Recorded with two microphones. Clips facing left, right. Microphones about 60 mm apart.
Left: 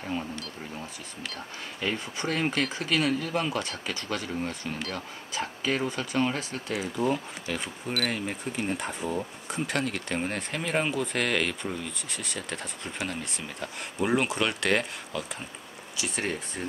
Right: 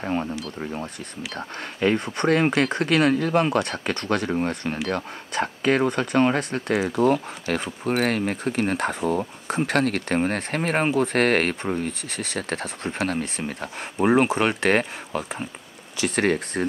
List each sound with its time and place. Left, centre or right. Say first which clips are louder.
0.0 s speech: right 7 dB; right
1.3 s speech: right 6 dB; right
13.7 s speech: right 7 dB; right
16.0 s speech: right 10 dB; right